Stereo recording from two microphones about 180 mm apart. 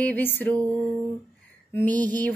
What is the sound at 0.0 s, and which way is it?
A woman's voice, 10° left (ahead or behind).